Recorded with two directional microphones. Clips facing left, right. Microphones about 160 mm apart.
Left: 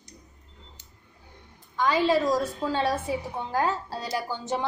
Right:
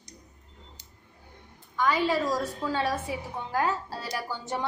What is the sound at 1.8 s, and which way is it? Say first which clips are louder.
A woman's voice: left 3 dB; 25° left (ahead or behind).